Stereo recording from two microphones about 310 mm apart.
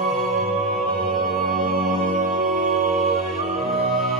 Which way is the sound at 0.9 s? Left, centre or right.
Right.